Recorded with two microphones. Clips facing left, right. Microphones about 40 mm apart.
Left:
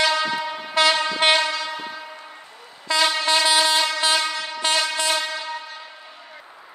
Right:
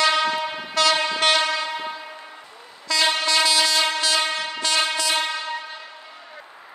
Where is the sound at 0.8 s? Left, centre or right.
Left.